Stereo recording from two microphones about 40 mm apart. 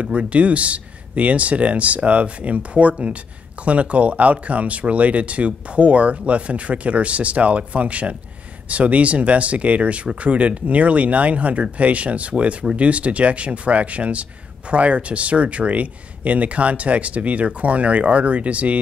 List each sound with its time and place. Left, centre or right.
0.0 s speech: right